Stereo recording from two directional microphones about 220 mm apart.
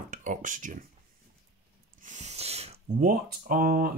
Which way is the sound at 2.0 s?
35° right (ahead or behind).